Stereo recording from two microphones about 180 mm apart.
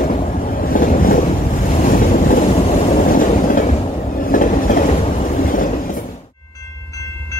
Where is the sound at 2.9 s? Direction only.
50° left (ahead or behind).